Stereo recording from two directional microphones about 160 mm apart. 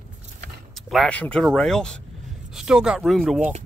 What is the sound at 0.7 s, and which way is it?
Speech, centre (ahead or behind).